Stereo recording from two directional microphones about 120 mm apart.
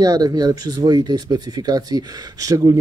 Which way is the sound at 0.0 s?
35° right (ahead or behind).